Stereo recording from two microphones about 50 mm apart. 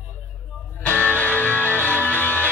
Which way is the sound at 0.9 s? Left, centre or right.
Left.